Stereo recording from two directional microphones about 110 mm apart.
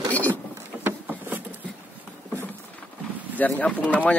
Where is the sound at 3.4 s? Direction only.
15° left (ahead or behind).